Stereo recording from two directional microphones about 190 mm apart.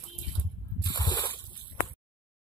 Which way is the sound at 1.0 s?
20° left (ahead or behind).